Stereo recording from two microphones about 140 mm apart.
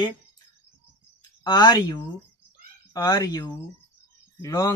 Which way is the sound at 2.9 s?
25° left (ahead or behind).